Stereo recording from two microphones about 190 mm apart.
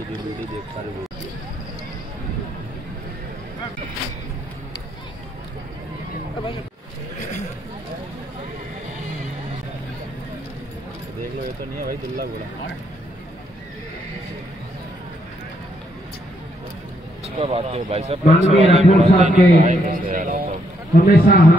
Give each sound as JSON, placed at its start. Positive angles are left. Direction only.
{"t": 11.8, "sound": "speech", "side_deg": -50}
{"t": 17.4, "sound": "a man's voice", "side_deg": -30}
{"t": 20.9, "sound": "a man's voice", "side_deg": 50}